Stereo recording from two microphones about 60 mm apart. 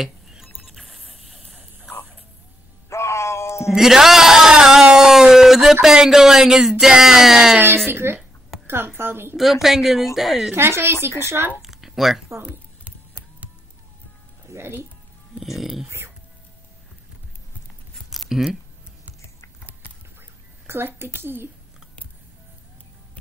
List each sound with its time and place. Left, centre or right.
0.0 s clock: centre
0.6 s a sound: centre
2.9 s groan: left
3.7 s a man's voice: centre
7.6 s a woman's voice: right
9.4 s a woman's voice: centre
10.5 s speech: right
11.6 s a sound: centre
14.5 s speech: right
15.3 s speech: centre
18.3 s speech: centre
20.2 s a sound: right